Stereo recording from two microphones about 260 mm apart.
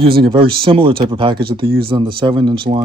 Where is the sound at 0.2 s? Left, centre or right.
Centre.